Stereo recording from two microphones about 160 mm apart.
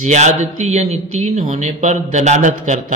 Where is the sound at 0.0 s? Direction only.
50° right (ahead or behind).